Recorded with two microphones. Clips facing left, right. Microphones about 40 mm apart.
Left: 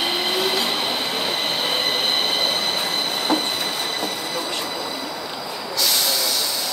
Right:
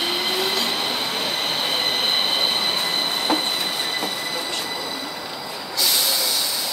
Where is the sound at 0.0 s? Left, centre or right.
Centre.